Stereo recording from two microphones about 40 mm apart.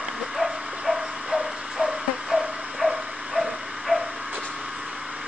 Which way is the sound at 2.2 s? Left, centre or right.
Centre.